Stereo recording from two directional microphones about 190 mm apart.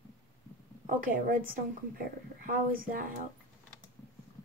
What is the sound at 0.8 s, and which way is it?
A woman's voice, 45° right (ahead or behind).